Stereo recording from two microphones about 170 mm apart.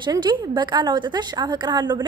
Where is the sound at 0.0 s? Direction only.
25° right (ahead or behind).